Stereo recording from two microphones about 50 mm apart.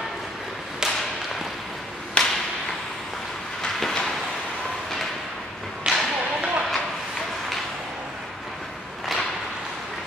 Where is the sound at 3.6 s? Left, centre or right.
Centre.